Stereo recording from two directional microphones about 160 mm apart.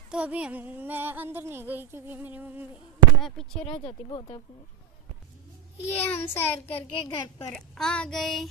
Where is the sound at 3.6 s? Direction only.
30° left (ahead or behind).